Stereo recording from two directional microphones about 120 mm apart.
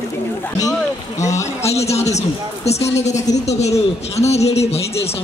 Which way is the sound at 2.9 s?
75° left (ahead or behind).